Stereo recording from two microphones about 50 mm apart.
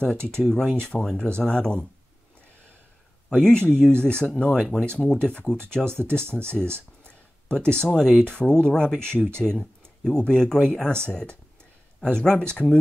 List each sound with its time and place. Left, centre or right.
0.0 s speech: centre
3.4 s speech: centre